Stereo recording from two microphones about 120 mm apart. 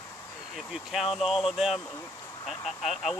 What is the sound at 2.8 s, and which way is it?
Speech, centre (ahead or behind).